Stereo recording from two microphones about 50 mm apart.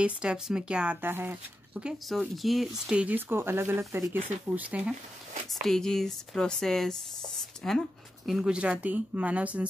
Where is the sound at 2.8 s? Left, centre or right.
Right.